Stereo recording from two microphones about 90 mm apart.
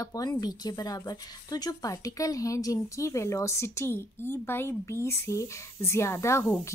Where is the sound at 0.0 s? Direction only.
40° left (ahead or behind).